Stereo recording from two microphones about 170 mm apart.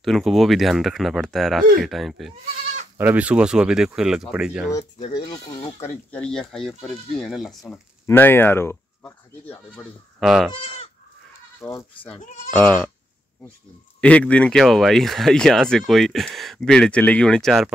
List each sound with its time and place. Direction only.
0.0 s speech: centre (ahead or behind)
5.3 s speech: 30° left (ahead or behind)
5.8 s speech: 10° left (ahead or behind)
7.7 s speech: 10° left (ahead or behind)
10.2 s speech: centre (ahead or behind)
12.5 s speech: 10° left (ahead or behind)
14.0 s speech: 5° left (ahead or behind)